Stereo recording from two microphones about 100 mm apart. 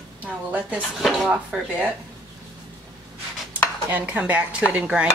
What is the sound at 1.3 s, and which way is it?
Speech, 10° right (ahead or behind).